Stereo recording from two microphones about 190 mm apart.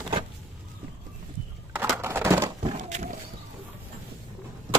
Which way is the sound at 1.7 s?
10° right (ahead or behind).